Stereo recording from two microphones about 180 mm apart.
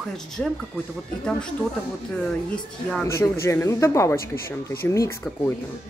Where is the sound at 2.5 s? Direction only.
10° left (ahead or behind).